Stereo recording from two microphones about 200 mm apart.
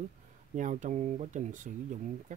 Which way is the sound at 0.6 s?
40° right (ahead or behind).